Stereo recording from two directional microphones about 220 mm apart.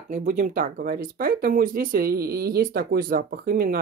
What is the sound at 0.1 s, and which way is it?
Speech, 35° right (ahead or behind).